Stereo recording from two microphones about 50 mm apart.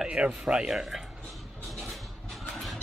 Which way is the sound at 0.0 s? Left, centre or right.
Centre.